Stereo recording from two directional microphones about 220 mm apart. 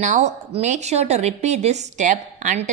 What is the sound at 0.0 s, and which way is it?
A woman's voice, 35° right (ahead or behind).